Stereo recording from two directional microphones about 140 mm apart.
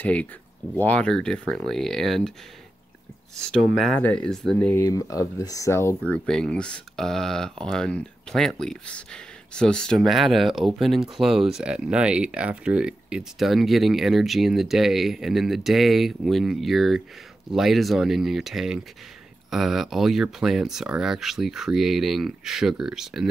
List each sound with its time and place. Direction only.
0.0 s speech: 10° left (ahead or behind)
3.3 s speech: 5° left (ahead or behind)
4.7 s speech: 25° left (ahead or behind)
6.1 s speech: 5° left (ahead or behind)